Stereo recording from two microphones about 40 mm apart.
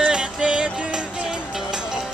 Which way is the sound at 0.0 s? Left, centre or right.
Right.